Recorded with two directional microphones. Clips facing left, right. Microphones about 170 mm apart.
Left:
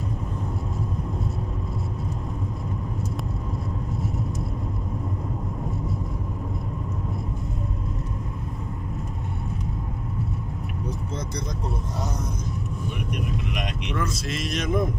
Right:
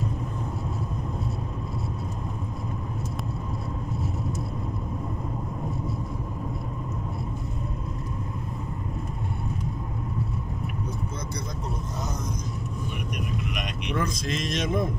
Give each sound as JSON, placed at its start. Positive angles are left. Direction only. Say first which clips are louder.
{"t": 13.1, "sound": "vehicle", "louder": "left 2 dB", "side_deg": 25}
{"t": 13.9, "sound": "speech", "louder": "right 2 dB", "side_deg": 5}